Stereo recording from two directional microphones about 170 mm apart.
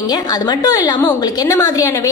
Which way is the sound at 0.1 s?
25° left (ahead or behind).